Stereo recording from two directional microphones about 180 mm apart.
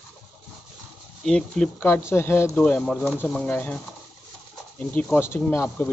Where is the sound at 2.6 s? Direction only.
5° left (ahead or behind).